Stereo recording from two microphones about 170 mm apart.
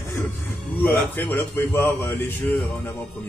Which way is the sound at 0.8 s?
10° left (ahead or behind).